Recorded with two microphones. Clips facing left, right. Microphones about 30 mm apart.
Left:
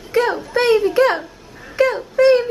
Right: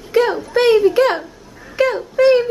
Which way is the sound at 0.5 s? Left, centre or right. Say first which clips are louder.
Right 3 dB; centre.